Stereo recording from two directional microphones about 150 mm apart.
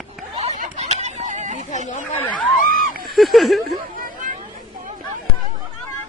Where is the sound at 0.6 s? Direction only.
50° right (ahead or behind).